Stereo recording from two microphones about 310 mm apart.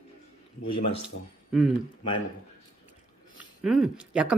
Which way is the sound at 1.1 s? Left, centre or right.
Left.